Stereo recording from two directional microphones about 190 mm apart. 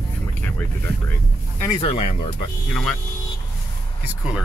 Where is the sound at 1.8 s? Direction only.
30° left (ahead or behind).